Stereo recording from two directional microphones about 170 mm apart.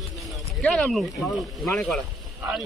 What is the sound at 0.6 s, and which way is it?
A man's voice, 5° left (ahead or behind).